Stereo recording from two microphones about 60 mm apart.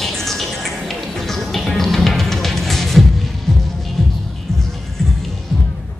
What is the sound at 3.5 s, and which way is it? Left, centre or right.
Music, centre.